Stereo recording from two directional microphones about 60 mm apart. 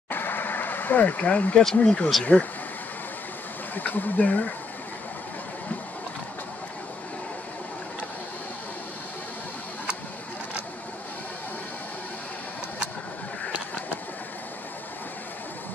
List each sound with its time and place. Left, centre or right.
0.1 s a sound: left
1.8 s speech: centre
3.7 s speech: left